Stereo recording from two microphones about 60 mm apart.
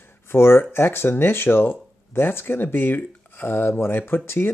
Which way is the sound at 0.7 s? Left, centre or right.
Left.